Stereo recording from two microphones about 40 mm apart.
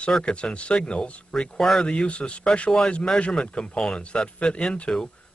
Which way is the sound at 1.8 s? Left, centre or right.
Left.